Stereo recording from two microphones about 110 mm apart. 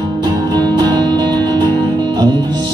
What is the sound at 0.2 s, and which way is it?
Music, 40° right (ahead or behind).